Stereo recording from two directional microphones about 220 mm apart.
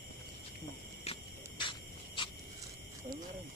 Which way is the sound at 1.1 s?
30° left (ahead or behind).